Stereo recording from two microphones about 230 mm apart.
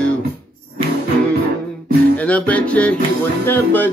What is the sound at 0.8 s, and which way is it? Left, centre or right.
Music, right.